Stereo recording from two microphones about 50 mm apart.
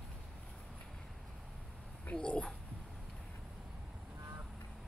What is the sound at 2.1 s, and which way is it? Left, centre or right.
Speech, left.